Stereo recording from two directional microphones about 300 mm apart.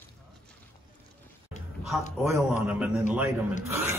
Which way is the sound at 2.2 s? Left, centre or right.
Centre.